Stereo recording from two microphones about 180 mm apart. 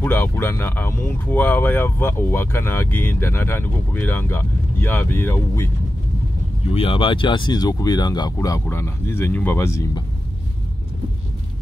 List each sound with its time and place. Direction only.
0.0 s speech: 10° left (ahead or behind)
6.7 s speech: 30° left (ahead or behind)